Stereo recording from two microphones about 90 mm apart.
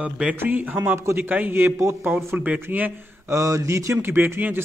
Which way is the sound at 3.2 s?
35° right (ahead or behind).